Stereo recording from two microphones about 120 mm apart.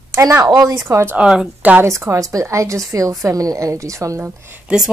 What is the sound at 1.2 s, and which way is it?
Speech, 5° right (ahead or behind).